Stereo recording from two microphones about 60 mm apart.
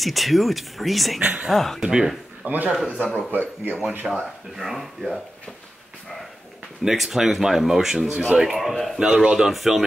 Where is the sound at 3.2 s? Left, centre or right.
Right.